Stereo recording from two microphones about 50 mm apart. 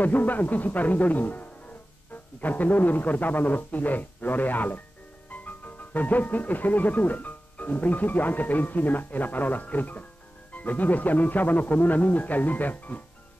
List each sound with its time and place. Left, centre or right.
0.0 s speech: left